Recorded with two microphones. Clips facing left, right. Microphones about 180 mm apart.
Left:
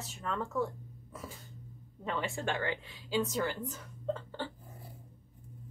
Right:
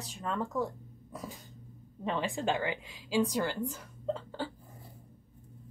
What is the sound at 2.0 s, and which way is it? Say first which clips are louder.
A woman's voice: right 3 dB; 20° right (ahead or behind).